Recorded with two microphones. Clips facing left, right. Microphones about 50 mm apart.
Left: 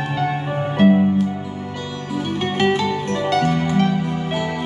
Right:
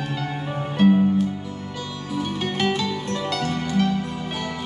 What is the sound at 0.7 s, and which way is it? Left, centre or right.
Music, centre.